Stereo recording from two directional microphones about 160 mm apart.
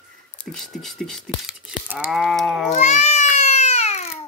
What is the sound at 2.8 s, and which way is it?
Babbling, 45° left (ahead or behind).